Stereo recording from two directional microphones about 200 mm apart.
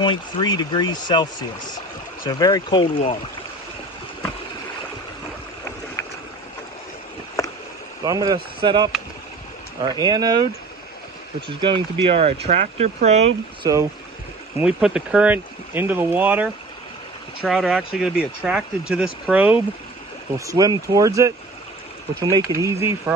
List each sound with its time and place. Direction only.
0.0 s speech: 20° left (ahead or behind)
6.0 s boat: 15° left (ahead or behind)
8.0 s speech: 20° right (ahead or behind)
11.4 s speech: 25° right (ahead or behind)
14.6 s speech: 5° right (ahead or behind)